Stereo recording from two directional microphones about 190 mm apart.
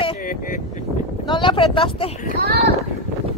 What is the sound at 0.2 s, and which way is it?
Speech, 45° left (ahead or behind).